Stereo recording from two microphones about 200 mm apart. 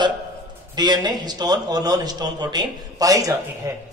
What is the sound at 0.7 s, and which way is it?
A man's voice, 20° right (ahead or behind).